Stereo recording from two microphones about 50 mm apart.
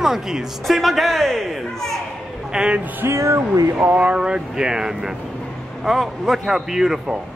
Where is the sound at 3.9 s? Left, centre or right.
Centre.